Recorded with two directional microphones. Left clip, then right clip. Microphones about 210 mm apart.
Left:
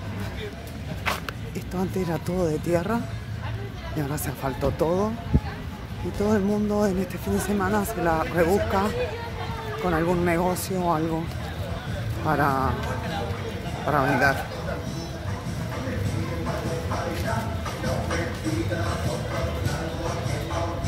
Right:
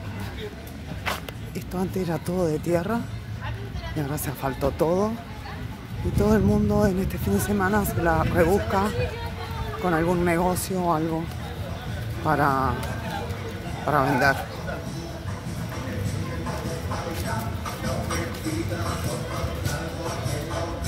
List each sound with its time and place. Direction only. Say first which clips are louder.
1.7 s speech: even; 10° right (ahead or behind)
4.1 s speech: right 2 dB; 15° right (ahead or behind)
6.2 s speech: right 2 dB; 20° right (ahead or behind)
12.3 s speech: right 1 dB; 20° right (ahead or behind)
13.8 s speech: right 1 dB; 20° right (ahead or behind)
17.6 s music: even; 50° right (ahead or behind)